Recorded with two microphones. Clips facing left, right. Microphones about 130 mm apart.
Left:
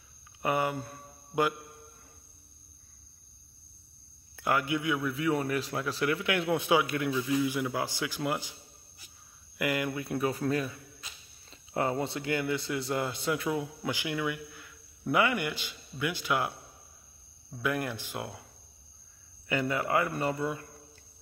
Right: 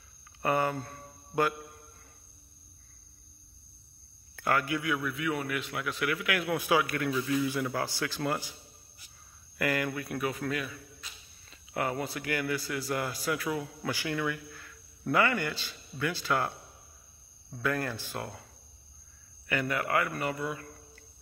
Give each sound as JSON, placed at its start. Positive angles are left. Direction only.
{"t": 0.4, "sound": "speech", "side_deg": 15}
{"t": 4.4, "sound": "a man's voice", "side_deg": 15}
{"t": 5.1, "sound": "a man's voice", "side_deg": 30}
{"t": 9.6, "sound": "a man's voice", "side_deg": 15}
{"t": 19.4, "sound": "a man's voice", "side_deg": 20}